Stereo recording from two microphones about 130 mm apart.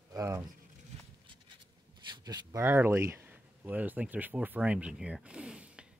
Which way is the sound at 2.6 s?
15° right (ahead or behind).